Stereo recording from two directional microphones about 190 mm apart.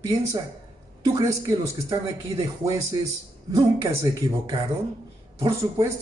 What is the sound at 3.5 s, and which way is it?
A man's voice, 15° right (ahead or behind).